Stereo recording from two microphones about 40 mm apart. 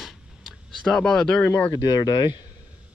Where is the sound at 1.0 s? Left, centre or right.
Centre.